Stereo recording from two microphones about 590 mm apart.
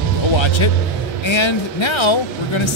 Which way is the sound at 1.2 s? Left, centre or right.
Left.